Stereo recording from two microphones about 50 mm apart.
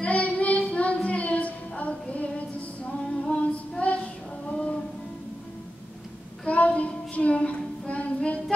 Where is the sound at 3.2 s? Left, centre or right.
Centre.